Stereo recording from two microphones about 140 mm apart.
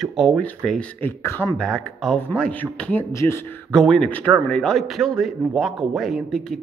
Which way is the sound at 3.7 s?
5° left (ahead or behind).